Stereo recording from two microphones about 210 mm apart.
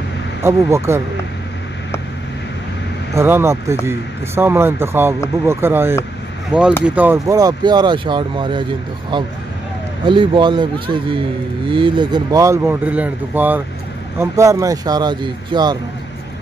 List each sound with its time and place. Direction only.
0.4 s speech: 15° right (ahead or behind)
3.2 s speech: 10° right (ahead or behind)
10.0 s speech: 25° right (ahead or behind)